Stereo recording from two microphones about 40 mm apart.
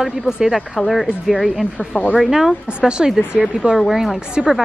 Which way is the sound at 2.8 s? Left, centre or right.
Right.